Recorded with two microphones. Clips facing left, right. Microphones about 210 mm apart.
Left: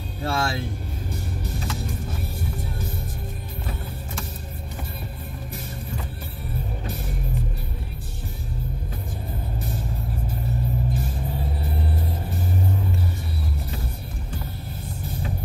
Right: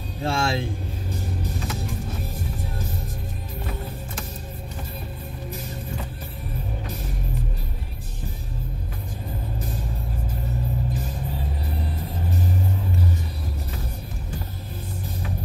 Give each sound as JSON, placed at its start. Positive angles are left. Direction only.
{"t": 0.2, "sound": "speech", "side_deg": -25}